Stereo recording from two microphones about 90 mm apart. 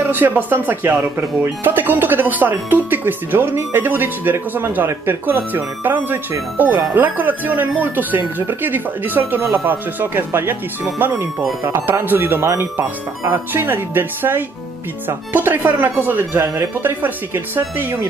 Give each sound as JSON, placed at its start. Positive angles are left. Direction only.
{"t": 0.1, "sound": "speech", "side_deg": -20}